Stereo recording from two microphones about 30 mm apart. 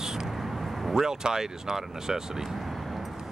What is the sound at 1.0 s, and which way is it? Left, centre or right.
Speech, centre.